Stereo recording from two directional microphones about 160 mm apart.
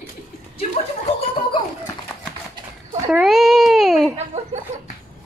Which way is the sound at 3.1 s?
Centre (ahead or behind).